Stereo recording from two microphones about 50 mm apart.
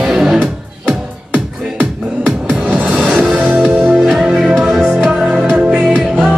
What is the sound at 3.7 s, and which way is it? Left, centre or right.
Music, right.